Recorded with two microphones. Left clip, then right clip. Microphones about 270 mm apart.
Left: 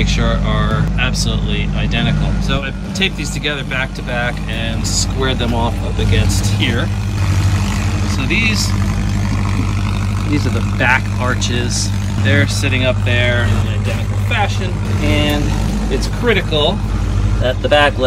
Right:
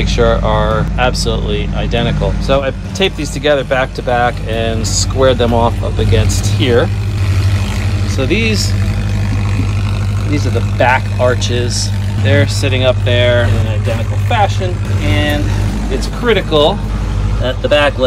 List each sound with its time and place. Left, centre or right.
0.0 s speech: centre
8.2 s speech: centre
10.8 s speech: centre
16.3 s speech: centre